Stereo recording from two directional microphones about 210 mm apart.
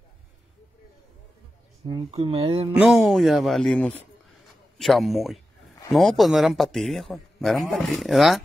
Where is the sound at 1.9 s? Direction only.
25° right (ahead or behind).